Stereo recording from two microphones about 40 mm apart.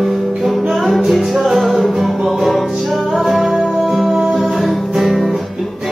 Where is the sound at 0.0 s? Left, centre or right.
Centre.